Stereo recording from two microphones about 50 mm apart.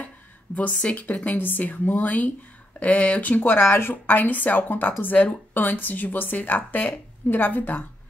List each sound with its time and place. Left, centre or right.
0.7 s a woman's voice: left
3.5 s speech: left
4.0 s a woman's voice: left